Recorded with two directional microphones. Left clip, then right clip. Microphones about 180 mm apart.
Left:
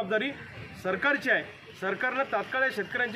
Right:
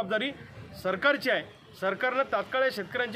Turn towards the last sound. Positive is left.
turn(degrees=-20)  # may be behind; listen again after turning